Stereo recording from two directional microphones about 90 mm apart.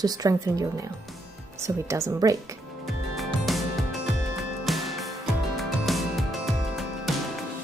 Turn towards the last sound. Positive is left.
turn(degrees=0)  # may be behind; listen again after turning